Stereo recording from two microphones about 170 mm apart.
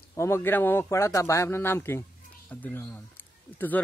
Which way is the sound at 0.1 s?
15° left (ahead or behind).